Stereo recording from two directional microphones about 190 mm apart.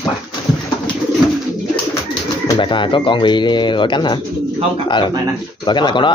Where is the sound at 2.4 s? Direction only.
25° left (ahead or behind).